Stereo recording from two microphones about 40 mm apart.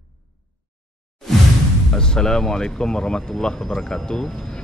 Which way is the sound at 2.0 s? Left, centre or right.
Centre.